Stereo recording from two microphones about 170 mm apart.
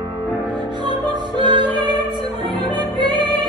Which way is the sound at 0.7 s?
25° right (ahead or behind).